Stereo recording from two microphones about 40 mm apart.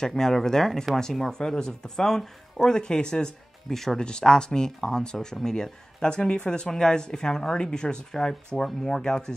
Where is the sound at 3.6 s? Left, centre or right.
Centre.